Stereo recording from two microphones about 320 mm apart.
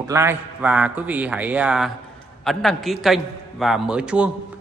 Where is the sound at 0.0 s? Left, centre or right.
Centre.